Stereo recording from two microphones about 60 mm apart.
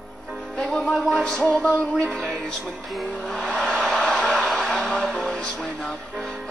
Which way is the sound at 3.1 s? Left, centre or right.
Centre.